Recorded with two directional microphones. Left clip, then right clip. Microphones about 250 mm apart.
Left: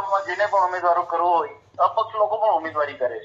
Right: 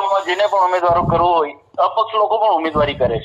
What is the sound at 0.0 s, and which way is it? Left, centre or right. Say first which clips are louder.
A man's voice: right 6 dB; right.